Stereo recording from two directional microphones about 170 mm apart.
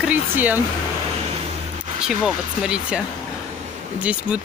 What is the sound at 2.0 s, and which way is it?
Speech, 5° right (ahead or behind).